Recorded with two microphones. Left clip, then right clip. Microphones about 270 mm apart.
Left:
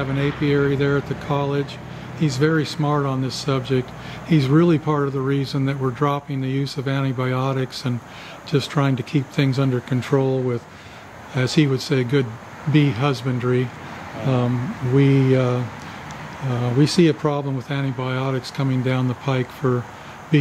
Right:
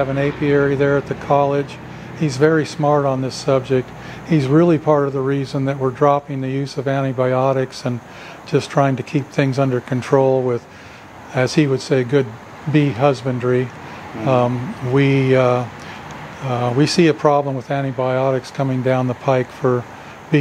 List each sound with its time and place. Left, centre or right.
0.0 s speech: centre
11.3 s speech: centre
14.2 s speech: centre